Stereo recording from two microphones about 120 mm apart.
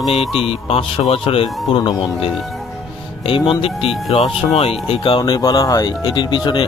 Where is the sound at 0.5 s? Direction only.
55° left (ahead or behind).